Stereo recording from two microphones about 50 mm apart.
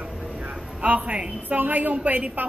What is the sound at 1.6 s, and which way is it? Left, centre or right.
Speech, right.